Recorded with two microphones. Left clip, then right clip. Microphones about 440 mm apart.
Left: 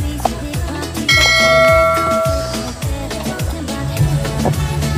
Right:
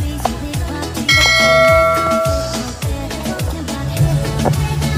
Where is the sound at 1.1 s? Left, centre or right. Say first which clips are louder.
Even; centre.